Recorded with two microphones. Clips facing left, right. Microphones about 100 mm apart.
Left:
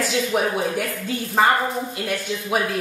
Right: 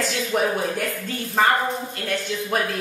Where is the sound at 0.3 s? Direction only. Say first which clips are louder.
Left 1 dB; 5° left (ahead or behind).